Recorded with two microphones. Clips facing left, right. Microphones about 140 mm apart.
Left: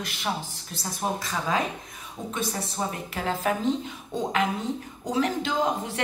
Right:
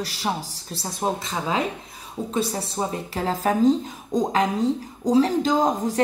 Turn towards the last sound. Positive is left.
turn(degrees=-40)  # may be behind; listen again after turning